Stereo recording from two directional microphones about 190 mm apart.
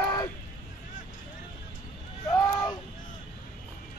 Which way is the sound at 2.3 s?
20° left (ahead or behind).